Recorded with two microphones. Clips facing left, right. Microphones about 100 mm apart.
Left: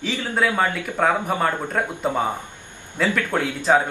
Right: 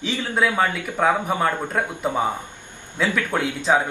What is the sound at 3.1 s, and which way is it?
Speech, 15° right (ahead or behind).